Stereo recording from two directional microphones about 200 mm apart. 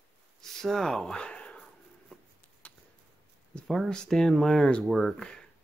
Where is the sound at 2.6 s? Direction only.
5° left (ahead or behind).